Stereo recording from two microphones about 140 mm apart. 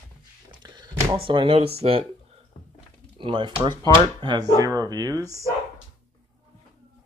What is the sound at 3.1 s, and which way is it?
Speech, 35° right (ahead or behind).